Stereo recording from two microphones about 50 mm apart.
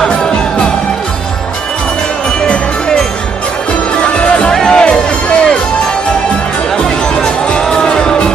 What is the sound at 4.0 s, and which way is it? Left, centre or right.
Music, centre.